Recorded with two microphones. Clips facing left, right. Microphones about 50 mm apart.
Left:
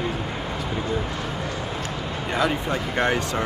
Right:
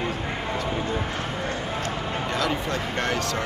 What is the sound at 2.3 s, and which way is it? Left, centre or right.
Speech, centre.